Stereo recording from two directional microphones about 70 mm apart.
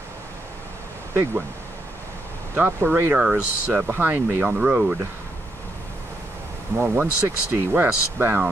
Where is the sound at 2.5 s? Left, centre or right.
Right.